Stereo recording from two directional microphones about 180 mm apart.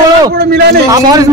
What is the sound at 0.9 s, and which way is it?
Speech, 20° right (ahead or behind).